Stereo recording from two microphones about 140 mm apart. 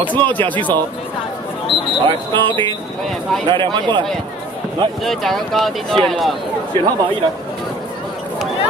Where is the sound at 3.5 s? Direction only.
35° right (ahead or behind).